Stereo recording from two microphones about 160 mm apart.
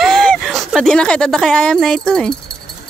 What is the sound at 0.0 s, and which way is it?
Speech, 5° left (ahead or behind).